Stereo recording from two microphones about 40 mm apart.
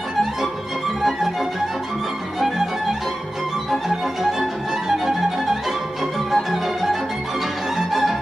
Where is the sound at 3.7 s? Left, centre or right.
Centre.